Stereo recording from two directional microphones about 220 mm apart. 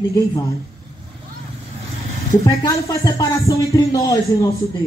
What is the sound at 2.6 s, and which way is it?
Speech, 15° left (ahead or behind).